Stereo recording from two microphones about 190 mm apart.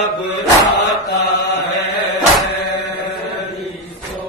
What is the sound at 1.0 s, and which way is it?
Chant, 60° left (ahead or behind).